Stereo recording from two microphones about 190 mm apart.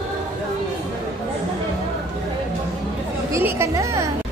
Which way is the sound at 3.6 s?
15° right (ahead or behind).